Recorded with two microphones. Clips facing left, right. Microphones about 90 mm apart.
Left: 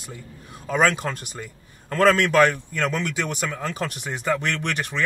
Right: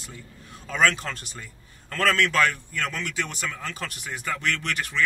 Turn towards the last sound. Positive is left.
turn(degrees=20)  # may be behind; listen again after turning